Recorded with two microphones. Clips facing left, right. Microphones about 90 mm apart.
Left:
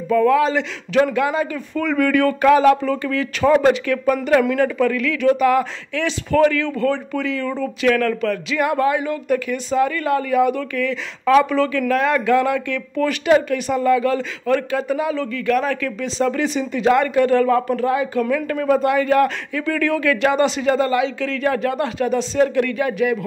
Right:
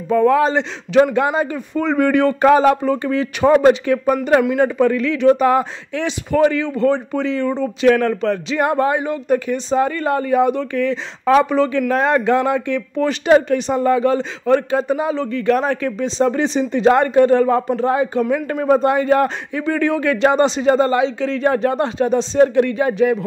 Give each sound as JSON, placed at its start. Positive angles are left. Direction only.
{"t": 0.1, "sound": "speech", "side_deg": -30}